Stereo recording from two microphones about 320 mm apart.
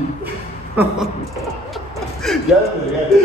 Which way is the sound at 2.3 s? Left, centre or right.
Centre.